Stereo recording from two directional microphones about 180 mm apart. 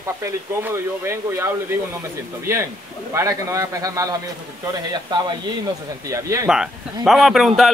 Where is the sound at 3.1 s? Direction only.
15° right (ahead or behind).